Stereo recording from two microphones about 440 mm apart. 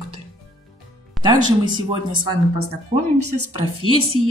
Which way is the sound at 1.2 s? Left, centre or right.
Centre.